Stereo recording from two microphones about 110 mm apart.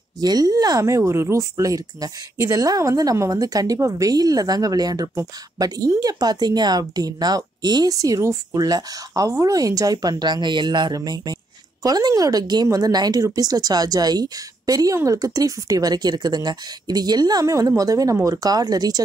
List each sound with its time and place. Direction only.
0.2 s speech: 35° right (ahead or behind)